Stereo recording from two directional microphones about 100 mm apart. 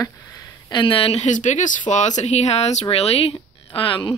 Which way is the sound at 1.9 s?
45° left (ahead or behind).